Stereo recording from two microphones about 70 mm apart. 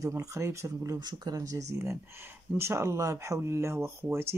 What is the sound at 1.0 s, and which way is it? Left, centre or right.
Speech, right.